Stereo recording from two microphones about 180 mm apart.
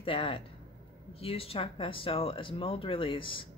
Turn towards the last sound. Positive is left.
turn(degrees=30)  # may be behind; listen again after turning